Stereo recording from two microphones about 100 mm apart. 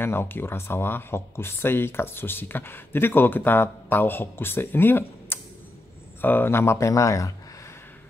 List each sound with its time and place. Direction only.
0.0 s speech: 20° left (ahead or behind)